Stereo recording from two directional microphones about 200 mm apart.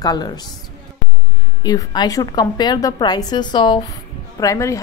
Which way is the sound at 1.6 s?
20° left (ahead or behind).